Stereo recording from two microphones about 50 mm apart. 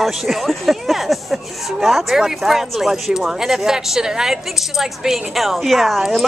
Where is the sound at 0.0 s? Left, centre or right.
Centre.